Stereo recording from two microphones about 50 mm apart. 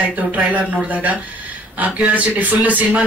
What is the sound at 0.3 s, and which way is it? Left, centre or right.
A man's voice, right.